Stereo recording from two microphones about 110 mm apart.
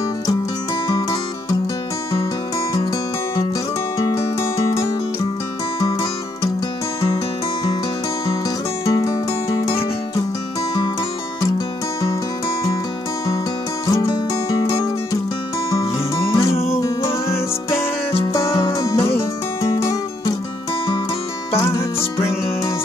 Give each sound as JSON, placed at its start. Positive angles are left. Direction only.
{"t": 4.0, "sound": "music", "side_deg": 30}
{"t": 8.8, "sound": "music", "side_deg": 30}
{"t": 13.8, "sound": "music", "side_deg": 35}
{"t": 16.3, "sound": "music", "side_deg": 30}
{"t": 18.7, "sound": "music", "side_deg": 35}
{"t": 21.5, "sound": "music", "side_deg": 25}